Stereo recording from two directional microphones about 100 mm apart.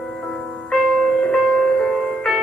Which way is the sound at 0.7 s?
5° left (ahead or behind).